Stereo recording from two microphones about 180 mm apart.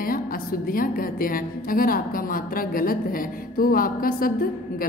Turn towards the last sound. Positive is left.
turn(degrees=50)  # may be behind; listen again after turning